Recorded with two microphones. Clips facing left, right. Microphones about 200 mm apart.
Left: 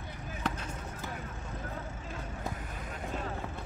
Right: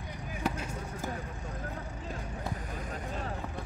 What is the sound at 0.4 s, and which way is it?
Vehicle, 10° right (ahead or behind).